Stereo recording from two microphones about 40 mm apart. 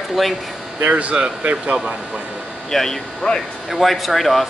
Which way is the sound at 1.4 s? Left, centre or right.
Right.